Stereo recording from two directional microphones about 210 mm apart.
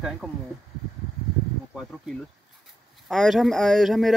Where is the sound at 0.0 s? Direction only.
Centre (ahead or behind).